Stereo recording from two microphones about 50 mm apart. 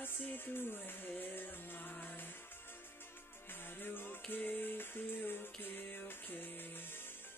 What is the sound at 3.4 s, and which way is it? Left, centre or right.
Music, left.